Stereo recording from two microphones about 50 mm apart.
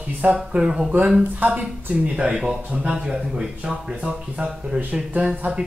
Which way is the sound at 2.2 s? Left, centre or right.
Centre.